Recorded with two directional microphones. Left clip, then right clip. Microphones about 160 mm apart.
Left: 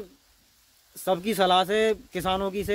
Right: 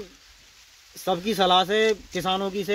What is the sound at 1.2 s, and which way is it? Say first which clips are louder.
Speech: right 2 dB; 50° left (ahead or behind).